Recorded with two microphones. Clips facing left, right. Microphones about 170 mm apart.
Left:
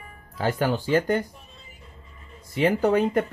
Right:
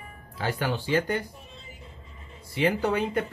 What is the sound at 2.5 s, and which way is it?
Speech, 40° left (ahead or behind).